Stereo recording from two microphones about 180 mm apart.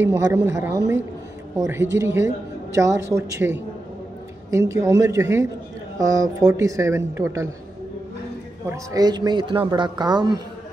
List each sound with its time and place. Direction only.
0.0 s a man's voice: 10° right (ahead or behind)
8.6 s speech: 20° right (ahead or behind)